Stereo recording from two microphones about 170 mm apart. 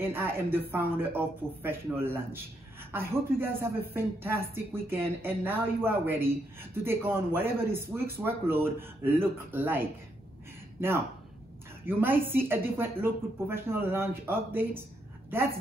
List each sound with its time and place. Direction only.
0.0 s a man's voice: 15° right (ahead or behind)
11.8 s a man's voice: 10° right (ahead or behind)